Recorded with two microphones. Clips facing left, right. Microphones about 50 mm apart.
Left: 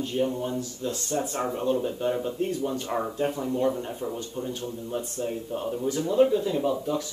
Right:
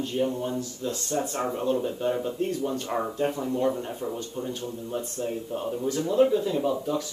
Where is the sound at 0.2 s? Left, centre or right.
Centre.